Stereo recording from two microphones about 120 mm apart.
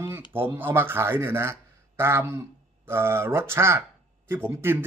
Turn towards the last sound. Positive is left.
turn(degrees=-15)  # may be behind; listen again after turning